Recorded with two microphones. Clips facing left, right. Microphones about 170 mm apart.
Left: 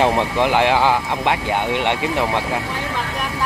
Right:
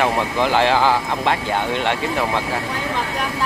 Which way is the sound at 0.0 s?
15° left (ahead or behind).